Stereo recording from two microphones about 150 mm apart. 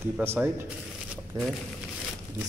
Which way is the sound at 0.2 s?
15° right (ahead or behind).